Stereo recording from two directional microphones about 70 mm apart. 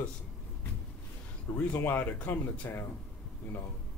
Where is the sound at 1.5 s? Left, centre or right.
Left.